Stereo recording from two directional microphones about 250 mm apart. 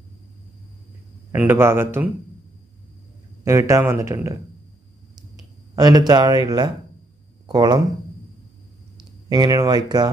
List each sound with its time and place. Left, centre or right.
1.3 s speech: centre
3.4 s speech: centre
5.8 s speech: centre
9.3 s speech: centre